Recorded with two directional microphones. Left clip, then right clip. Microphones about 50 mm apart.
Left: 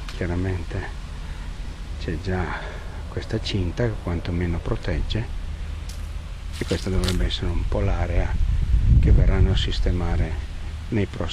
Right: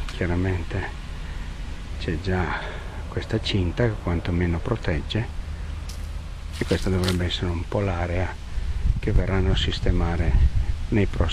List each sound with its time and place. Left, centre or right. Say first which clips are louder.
0.2 s speech: right 2 dB; right
2.0 s speech: right 2 dB; right
6.6 s speech: right 2 dB; centre
7.2 s speech: right 1 dB; right